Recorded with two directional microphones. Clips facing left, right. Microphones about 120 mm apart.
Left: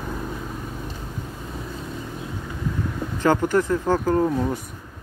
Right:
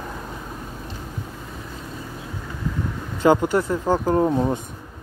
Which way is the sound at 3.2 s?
15° right (ahead or behind).